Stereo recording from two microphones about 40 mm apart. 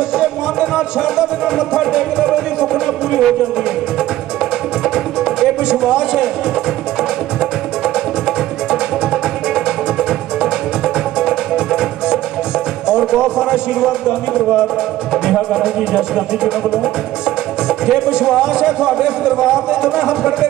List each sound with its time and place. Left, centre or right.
0.2 s speech: right
1.8 s music: centre
4.8 s music: centre
7.8 s music: centre
11.1 s music: centre
12.8 s a man's voice: right
15.5 s speech: centre
17.6 s speech: centre